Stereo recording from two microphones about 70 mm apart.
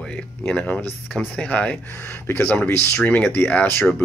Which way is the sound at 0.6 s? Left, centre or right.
Centre.